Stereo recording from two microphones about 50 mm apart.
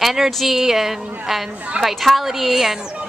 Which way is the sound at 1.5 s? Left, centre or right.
Right.